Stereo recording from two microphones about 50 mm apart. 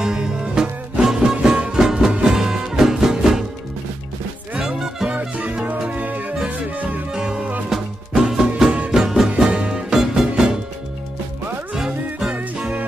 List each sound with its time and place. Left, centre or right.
0.0 s music: centre
4.6 s music: centre
5.9 s music: right
7.1 s music: centre
7.7 s music: centre
9.9 s music: centre
11.7 s music: centre